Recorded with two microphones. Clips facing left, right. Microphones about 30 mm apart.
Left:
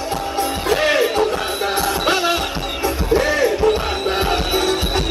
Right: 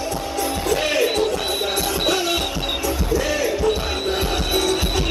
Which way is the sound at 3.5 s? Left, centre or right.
Left.